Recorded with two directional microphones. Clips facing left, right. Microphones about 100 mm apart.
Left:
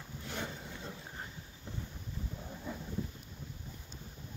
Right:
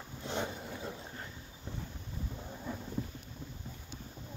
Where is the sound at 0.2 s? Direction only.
20° right (ahead or behind).